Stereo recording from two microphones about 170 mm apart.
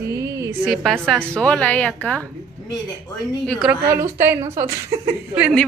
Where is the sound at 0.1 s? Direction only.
20° right (ahead or behind).